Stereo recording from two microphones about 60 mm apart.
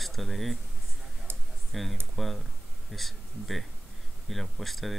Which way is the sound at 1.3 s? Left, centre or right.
Right.